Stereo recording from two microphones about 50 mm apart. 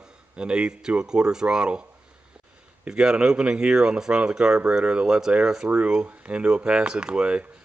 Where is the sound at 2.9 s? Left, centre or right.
Centre.